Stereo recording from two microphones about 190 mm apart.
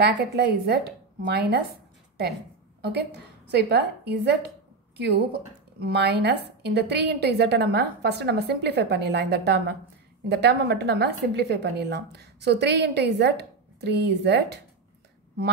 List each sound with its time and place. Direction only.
0.0 s speech: 60° right (ahead or behind)
2.8 s a woman's voice: 60° right (ahead or behind)